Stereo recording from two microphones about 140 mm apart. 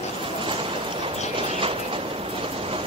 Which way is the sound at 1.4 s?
40° right (ahead or behind).